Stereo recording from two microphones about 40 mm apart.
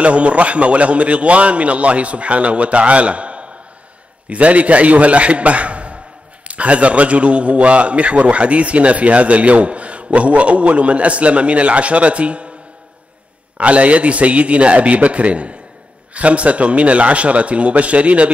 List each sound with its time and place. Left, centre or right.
0.0 s a man's voice: right
13.6 s a man's voice: right